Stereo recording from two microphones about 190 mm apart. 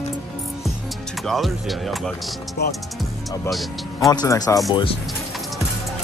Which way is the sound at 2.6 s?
50° left (ahead or behind).